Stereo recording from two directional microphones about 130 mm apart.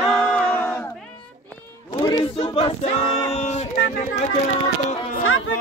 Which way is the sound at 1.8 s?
30° left (ahead or behind).